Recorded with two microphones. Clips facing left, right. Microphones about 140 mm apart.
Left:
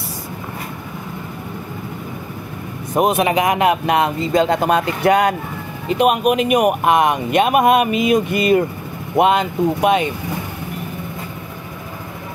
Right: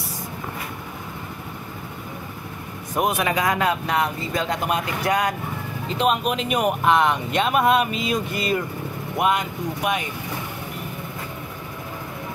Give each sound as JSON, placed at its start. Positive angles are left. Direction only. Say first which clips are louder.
{"t": 2.9, "sound": "speech", "louder": "left 6 dB", "side_deg": 25}
{"t": 4.5, "sound": "speech", "louder": "left 8 dB", "side_deg": 30}
{"t": 5.0, "sound": "speech", "louder": "left 8 dB", "side_deg": 60}
{"t": 5.9, "sound": "speech", "louder": "left 7 dB", "side_deg": 15}
{"t": 9.8, "sound": "speech", "louder": "left 8 dB", "side_deg": 90}